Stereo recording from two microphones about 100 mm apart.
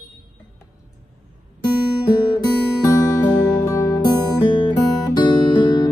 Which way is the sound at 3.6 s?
25° left (ahead or behind).